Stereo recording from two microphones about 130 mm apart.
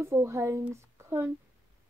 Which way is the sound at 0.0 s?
20° right (ahead or behind).